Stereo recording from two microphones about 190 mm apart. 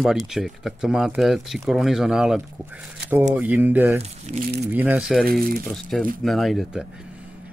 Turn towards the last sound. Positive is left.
turn(degrees=0)  # may be behind; listen again after turning